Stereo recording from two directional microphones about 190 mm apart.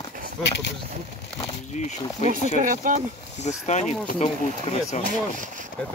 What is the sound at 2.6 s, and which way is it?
Speech, 45° right (ahead or behind).